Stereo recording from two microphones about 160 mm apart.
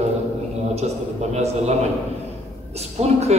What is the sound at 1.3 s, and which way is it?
Speech, 40° right (ahead or behind).